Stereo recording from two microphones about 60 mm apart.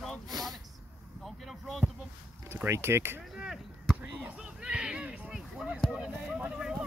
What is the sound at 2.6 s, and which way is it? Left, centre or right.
Speech, right.